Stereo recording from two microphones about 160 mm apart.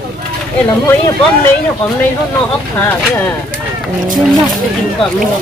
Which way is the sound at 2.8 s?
15° left (ahead or behind).